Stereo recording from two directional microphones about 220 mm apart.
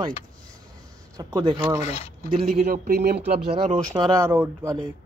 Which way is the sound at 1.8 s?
30° left (ahead or behind).